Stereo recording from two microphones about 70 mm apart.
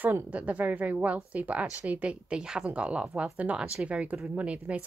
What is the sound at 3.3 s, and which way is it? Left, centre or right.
A woman's voice, centre.